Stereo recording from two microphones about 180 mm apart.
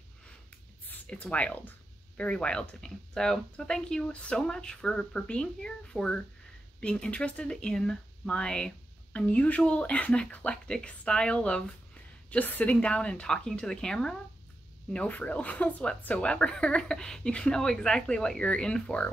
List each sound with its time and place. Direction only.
0.8 s speech: 10° left (ahead or behind)